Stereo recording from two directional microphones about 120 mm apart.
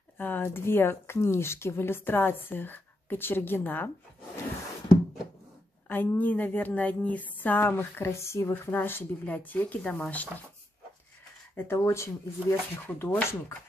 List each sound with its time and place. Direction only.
0.2 s speech: 15° left (ahead or behind)
5.9 s speech: 15° left (ahead or behind)
11.5 s speech: 20° left (ahead or behind)
12.7 s speech: 10° left (ahead or behind)